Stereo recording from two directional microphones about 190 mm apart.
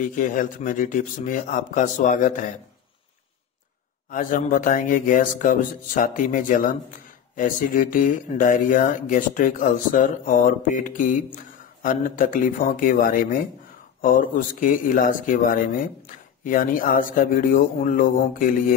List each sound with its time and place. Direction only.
0.0 s speech: 45° left (ahead or behind)
4.1 s speech: 45° left (ahead or behind)